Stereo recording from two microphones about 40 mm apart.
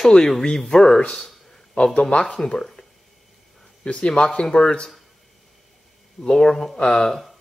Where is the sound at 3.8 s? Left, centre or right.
Left.